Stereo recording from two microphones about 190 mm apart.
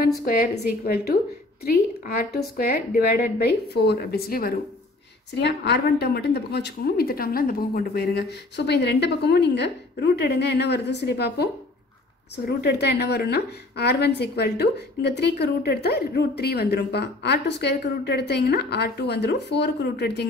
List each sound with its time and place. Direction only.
1.6 s a woman's voice: 55° left (ahead or behind)
12.4 s a woman's voice: 60° left (ahead or behind)